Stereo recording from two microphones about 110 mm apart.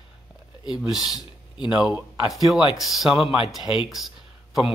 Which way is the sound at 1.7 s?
10° right (ahead or behind).